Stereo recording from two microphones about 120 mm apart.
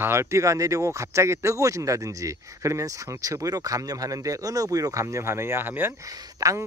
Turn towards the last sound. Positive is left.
turn(degrees=-25)  # may be behind; listen again after turning